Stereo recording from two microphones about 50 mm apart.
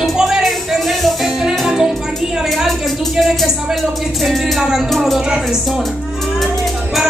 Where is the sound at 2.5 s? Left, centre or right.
Centre.